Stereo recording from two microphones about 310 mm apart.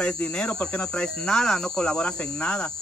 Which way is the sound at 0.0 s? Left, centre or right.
Centre.